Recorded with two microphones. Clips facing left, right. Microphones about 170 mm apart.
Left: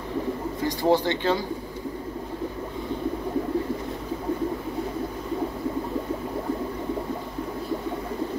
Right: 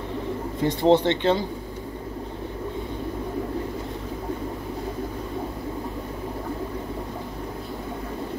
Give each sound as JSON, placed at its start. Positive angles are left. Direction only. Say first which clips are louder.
{"t": 0.6, "sound": "speech", "louder": "right 4 dB", "side_deg": -25}